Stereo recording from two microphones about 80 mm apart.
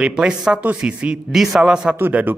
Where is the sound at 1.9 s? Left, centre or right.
Right.